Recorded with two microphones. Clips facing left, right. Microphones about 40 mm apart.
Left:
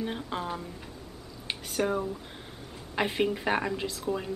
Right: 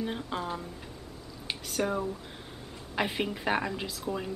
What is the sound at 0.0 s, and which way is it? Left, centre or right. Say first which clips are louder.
Speech: even; centre.